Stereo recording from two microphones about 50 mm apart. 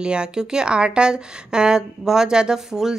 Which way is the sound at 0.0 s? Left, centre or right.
Centre.